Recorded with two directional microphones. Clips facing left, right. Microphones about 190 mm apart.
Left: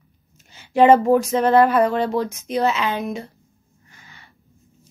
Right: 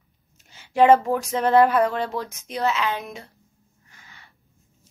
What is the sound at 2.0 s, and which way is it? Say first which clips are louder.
Speech: left 6 dB; 20° left (ahead or behind).